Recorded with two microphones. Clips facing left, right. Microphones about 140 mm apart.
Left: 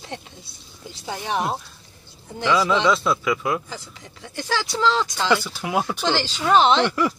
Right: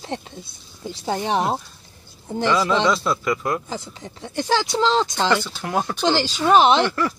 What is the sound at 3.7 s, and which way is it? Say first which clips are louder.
Speech: right 6 dB; 30° right (ahead or behind).